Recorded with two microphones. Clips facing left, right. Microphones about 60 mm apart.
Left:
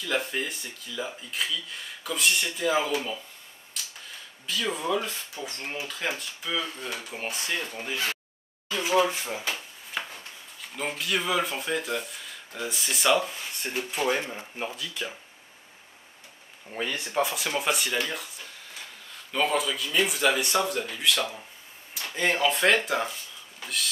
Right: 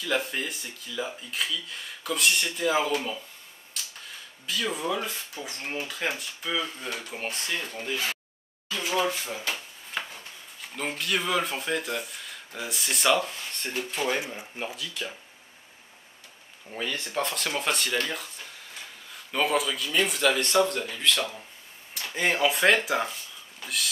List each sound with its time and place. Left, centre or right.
0.0 s speech: centre
4.5 s speech: centre
8.7 s a sound: centre
9.1 s speech: left
9.5 s speech: centre
16.7 s speech: centre